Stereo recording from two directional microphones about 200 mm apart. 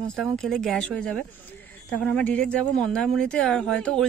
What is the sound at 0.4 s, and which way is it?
Speech, centre (ahead or behind).